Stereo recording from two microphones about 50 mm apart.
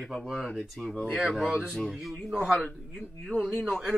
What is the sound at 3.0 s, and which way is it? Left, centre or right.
Speech, centre.